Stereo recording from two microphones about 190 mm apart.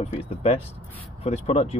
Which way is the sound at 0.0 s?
35° left (ahead or behind).